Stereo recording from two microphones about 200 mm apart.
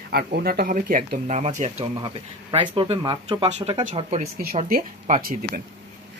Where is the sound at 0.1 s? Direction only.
50° right (ahead or behind).